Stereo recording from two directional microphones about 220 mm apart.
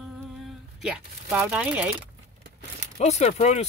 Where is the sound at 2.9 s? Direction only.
30° left (ahead or behind).